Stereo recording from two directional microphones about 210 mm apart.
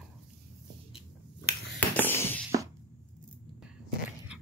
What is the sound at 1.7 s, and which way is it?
Hands, 10° left (ahead or behind).